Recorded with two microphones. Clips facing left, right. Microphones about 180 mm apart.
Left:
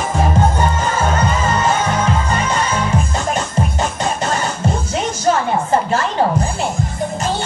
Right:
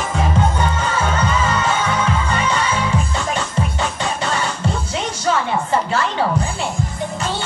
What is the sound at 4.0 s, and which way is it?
Music, 45° left (ahead or behind).